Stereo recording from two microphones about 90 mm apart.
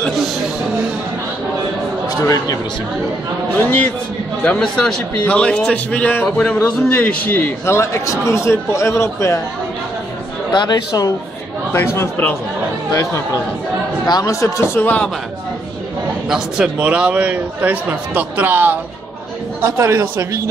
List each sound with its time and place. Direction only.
2.2 s speech: 45° left (ahead or behind)
3.5 s a man's voice: 20° left (ahead or behind)
10.5 s speech: 55° left (ahead or behind)
11.7 s a man's voice: 30° left (ahead or behind)
14.2 s speech: 35° left (ahead or behind)
14.8 s a man's voice: 15° left (ahead or behind)
16.3 s a man's voice: 5° right (ahead or behind); by 20.4 s 35° right (ahead or behind)